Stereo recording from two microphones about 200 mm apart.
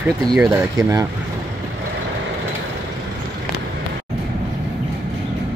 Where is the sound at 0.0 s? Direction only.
5° right (ahead or behind).